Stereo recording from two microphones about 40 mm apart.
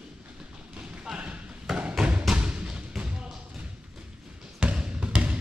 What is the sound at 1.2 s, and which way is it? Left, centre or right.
Basketball bounce, right.